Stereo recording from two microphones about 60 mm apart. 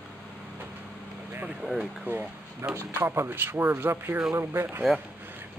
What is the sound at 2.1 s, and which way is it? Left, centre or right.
Speech, right.